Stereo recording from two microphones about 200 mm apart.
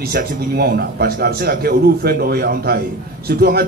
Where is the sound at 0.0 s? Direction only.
50° right (ahead or behind).